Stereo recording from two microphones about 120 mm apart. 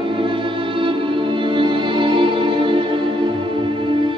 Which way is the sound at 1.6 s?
45° right (ahead or behind).